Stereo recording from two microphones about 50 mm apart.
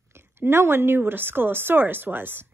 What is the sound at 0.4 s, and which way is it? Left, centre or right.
A woman's voice, right.